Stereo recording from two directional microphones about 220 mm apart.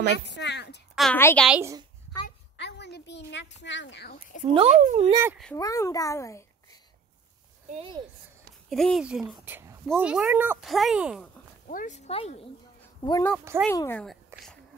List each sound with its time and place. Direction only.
0.1 s speech: 50° left (ahead or behind)
0.9 s speech: 5° left (ahead or behind)
1.5 s a woman's voice: 15° right (ahead or behind)
2.5 s a woman's voice: 50° left (ahead or behind)
4.6 s a child's voice: 30° right (ahead or behind)
5.1 s a woman's voice: 10° right (ahead or behind)
5.6 s a child's voice: 15° left (ahead or behind)
7.7 s a child's voice: 25° right (ahead or behind)
8.6 s a woman's voice: centre (ahead or behind)
11.6 s speech: 35° left (ahead or behind)
13.0 s speech: 20° left (ahead or behind)
13.4 s a woman's voice: 10° right (ahead or behind)
13.7 s speech: 10° left (ahead or behind)